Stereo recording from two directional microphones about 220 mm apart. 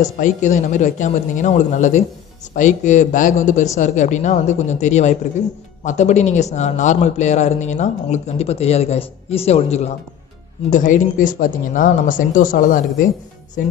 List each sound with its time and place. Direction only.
0.0 s a man's voice: 35° left (ahead or behind)